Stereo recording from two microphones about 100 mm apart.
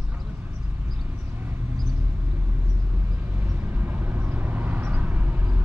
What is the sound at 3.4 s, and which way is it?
Vehicle, 20° right (ahead or behind).